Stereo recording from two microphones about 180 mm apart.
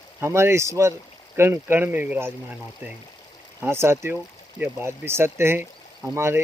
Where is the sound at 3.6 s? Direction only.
15° right (ahead or behind).